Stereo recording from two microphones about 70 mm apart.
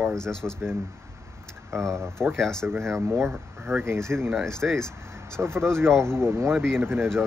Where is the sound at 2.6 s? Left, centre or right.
Right.